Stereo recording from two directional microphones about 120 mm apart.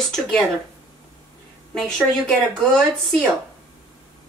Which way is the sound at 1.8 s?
Centre (ahead or behind).